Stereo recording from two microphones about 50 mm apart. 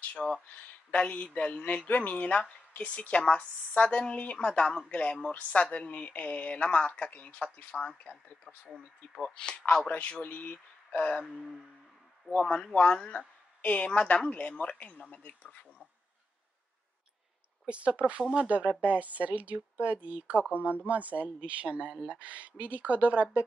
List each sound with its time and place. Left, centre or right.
0.0 s speech: left
4.5 s speech: centre
8.6 s speech: centre
9.3 s speech: centre
9.8 s speech: left
12.3 s speech: left
17.6 s speech: right